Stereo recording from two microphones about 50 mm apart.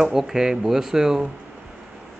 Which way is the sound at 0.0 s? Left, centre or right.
Centre.